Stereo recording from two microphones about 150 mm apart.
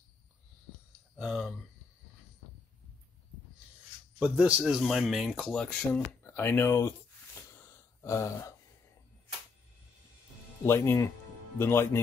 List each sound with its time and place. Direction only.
1.1 s speech: centre (ahead or behind)
4.2 s speech: 5° right (ahead or behind); by 6.9 s 15° left (ahead or behind)
7.5 s gasp: 15° left (ahead or behind)
10.6 s speech: 15° left (ahead or behind)